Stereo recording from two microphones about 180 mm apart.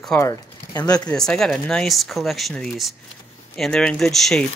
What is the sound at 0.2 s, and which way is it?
Speech, 20° left (ahead or behind).